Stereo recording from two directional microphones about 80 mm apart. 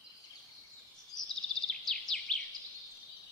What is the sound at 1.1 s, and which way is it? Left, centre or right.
Bird vocalization, left.